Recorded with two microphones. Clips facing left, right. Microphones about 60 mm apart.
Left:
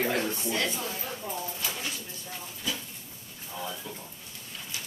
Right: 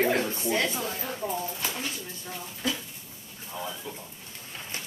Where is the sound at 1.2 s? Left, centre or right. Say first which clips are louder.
Right 7 dB; right.